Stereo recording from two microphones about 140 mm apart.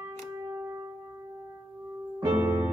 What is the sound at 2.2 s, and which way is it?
Music, 15° right (ahead or behind).